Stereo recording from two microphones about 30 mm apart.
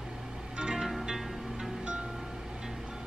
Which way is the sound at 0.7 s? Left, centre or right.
Centre.